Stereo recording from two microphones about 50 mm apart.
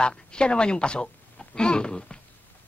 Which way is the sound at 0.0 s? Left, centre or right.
Centre.